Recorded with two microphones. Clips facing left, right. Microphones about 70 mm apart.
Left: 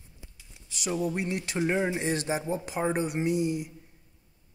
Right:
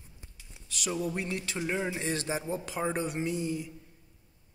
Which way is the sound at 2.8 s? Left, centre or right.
Centre.